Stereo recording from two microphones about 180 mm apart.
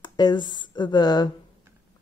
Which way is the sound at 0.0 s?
25° left (ahead or behind).